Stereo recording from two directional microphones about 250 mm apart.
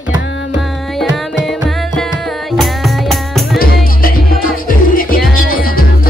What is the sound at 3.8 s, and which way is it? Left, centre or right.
Music, left.